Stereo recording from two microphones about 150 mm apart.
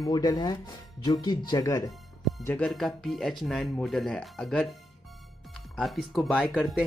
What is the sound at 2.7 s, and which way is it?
Speech, centre (ahead or behind).